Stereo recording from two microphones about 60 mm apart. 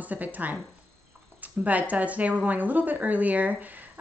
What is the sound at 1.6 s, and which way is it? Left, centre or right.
A woman's voice, right.